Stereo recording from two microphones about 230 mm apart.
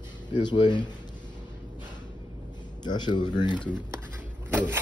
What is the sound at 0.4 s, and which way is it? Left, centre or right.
Speech, centre.